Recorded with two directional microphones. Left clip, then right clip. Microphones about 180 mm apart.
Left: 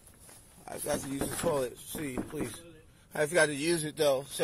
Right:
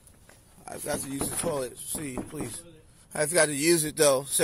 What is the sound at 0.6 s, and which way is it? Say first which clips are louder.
A man's voice: right 1 dB; 20° right (ahead or behind).